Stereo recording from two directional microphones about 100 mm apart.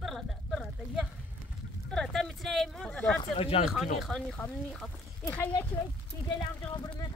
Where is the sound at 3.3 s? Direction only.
80° left.